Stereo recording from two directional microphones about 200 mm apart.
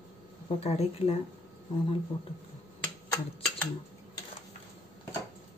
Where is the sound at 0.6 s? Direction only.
30° left (ahead or behind).